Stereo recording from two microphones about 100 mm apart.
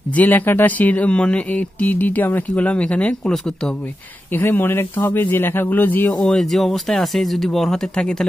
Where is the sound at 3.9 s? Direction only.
20° left (ahead or behind).